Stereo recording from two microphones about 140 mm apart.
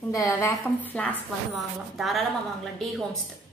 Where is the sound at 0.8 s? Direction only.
10° left (ahead or behind).